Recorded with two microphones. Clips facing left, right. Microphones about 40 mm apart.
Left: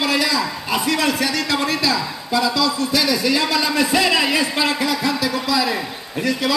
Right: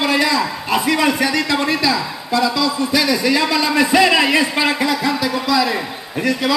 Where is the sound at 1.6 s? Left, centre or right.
Centre.